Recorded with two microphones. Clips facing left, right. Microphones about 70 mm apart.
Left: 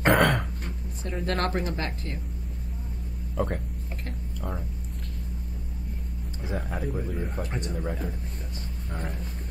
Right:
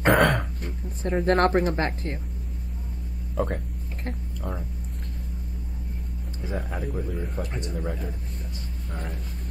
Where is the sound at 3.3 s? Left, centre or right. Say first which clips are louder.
Right 1 dB; centre.